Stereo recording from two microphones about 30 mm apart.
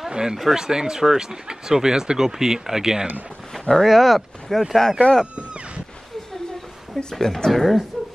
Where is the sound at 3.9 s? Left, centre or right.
Centre.